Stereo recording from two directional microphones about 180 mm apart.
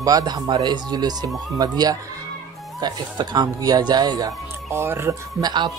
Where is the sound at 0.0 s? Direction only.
20° right (ahead or behind).